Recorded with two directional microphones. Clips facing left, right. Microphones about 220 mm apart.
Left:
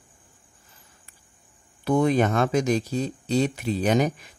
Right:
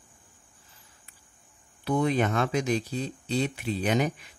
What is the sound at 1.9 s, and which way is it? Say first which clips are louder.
Speech: left 4 dB; 45° left (ahead or behind).